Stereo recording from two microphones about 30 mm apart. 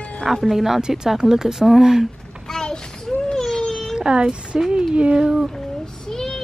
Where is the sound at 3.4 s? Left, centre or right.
Centre.